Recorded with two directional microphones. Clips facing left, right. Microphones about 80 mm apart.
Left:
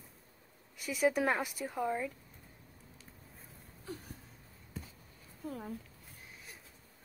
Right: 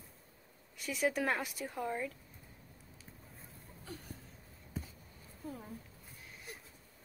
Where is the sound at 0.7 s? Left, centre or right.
Centre.